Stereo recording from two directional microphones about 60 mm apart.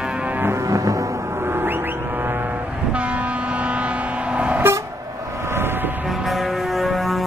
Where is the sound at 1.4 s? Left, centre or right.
Right.